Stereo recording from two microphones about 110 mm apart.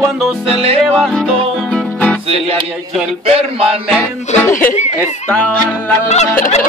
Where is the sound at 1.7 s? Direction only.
10° left (ahead or behind).